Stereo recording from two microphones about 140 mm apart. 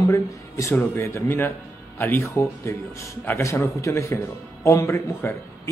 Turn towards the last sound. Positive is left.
turn(degrees=20)  # may be behind; listen again after turning